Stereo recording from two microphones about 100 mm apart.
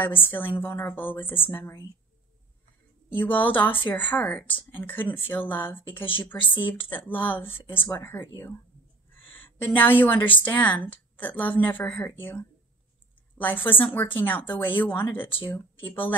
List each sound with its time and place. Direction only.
0.0 s a woman's voice: 20° left (ahead or behind)
3.1 s a woman's voice: 20° left (ahead or behind)
15.2 s speech: 60° left (ahead or behind)
15.9 s a woman's voice: 20° left (ahead or behind)